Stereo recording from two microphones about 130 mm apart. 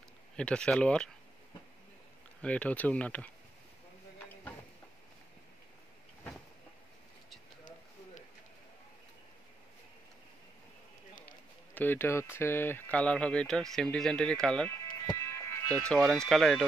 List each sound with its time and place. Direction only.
0.4 s speech: 5° left (ahead or behind)
2.4 s speech: 10° left (ahead or behind)
11.7 s speech: 15° left (ahead or behind)
15.1 s music: 20° left (ahead or behind)
15.8 s speech: 5° left (ahead or behind)